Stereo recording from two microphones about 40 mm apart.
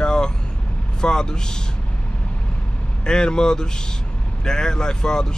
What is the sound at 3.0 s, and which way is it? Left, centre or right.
Speech, centre.